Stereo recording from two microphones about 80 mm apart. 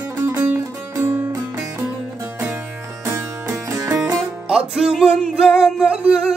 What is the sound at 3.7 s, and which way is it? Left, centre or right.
Music, right.